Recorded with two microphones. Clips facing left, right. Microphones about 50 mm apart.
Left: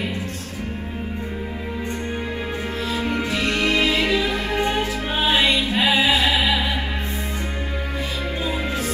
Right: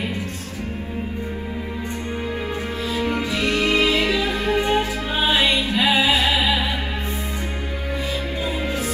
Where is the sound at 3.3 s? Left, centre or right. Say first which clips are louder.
Even; left.